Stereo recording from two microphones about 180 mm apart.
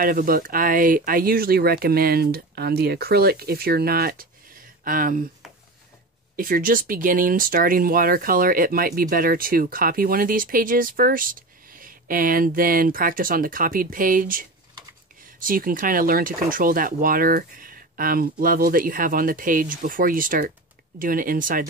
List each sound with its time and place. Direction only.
0.0 s speech: 50° right (ahead or behind)
6.3 s speech: 50° right (ahead or behind)